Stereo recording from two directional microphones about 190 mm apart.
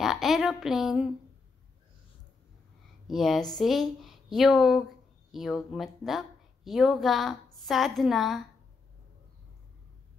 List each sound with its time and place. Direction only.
0.0 s a woman's voice: centre (ahead or behind)
3.1 s speech: centre (ahead or behind)